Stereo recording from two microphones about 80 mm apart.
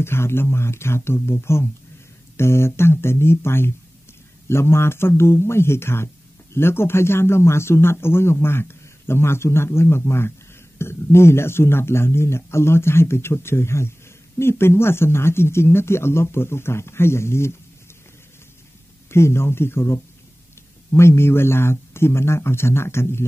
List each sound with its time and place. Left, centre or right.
0.0 s a man's voice: left
19.0 s a man's voice: left